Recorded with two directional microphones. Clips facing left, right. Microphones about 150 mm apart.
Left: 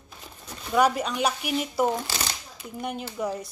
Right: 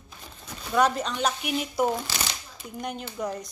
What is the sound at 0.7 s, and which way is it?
Speech, 5° left (ahead or behind).